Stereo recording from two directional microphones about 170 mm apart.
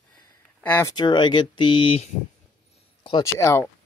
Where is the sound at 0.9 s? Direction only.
25° left (ahead or behind).